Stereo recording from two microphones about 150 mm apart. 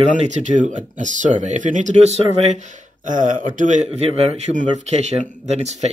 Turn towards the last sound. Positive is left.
turn(degrees=-50)  # may be behind; listen again after turning